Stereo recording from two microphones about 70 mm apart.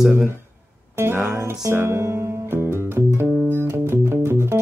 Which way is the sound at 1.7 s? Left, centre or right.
Right.